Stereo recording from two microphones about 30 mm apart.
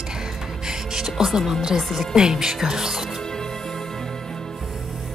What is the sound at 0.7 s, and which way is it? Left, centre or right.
Music, centre.